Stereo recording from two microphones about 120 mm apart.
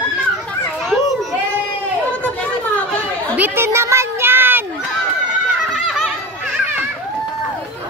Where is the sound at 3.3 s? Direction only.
15° right (ahead or behind).